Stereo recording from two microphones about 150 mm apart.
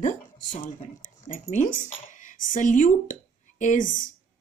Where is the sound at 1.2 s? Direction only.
55° left (ahead or behind).